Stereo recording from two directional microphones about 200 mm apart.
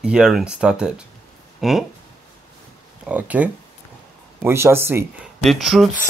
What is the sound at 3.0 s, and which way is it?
Speech, 5° right (ahead or behind).